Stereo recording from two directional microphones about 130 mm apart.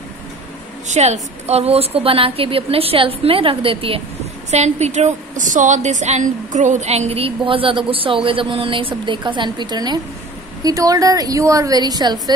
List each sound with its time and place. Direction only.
0.8 s a woman's voice: 65° right (ahead or behind); by 4.0 s 45° right (ahead or behind)
4.5 s a woman's voice: 60° right (ahead or behind); by 12.2 s 35° right (ahead or behind)